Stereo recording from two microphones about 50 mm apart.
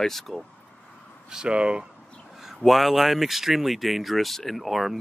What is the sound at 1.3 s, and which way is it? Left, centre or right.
Speech, centre.